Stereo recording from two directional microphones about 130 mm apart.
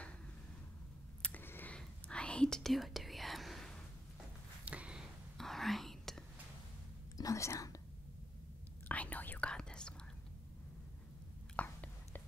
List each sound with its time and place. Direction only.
1.2 s whispering: 15° left (ahead or behind)
4.6 s whispering: 10° right (ahead or behind)
7.2 s speech: 25° left (ahead or behind)
8.8 s whispering: 10° left (ahead or behind)
11.5 s whispering: 15° left (ahead or behind)